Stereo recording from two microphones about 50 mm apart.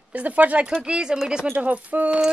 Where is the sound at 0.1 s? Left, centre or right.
Right.